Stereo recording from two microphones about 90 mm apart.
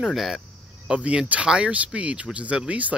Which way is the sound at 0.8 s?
10° right (ahead or behind).